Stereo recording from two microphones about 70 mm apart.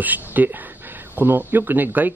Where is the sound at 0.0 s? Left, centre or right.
Right.